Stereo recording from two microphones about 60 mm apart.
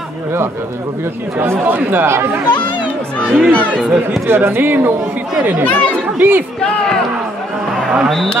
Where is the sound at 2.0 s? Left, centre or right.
Right.